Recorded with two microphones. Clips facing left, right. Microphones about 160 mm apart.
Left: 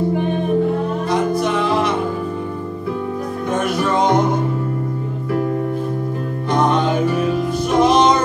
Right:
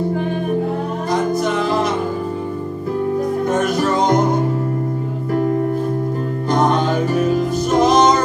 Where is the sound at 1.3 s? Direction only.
40° right (ahead or behind).